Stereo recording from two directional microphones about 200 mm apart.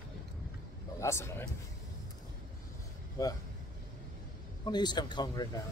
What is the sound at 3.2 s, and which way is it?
Speech, 15° left (ahead or behind).